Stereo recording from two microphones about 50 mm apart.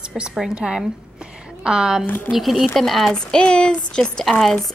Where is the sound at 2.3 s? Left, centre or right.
Centre.